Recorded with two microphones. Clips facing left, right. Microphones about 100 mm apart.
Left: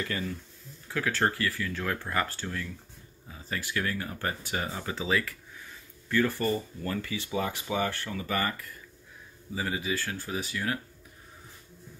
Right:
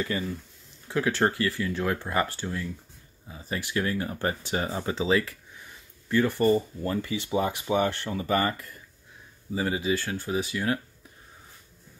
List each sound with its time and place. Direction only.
0.1 s speech: 20° right (ahead or behind)